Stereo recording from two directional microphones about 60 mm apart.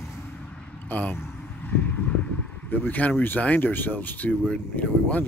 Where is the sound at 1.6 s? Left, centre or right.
Left.